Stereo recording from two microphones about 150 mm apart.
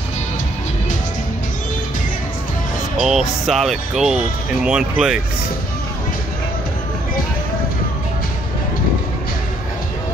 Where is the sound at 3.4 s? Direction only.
Centre (ahead or behind).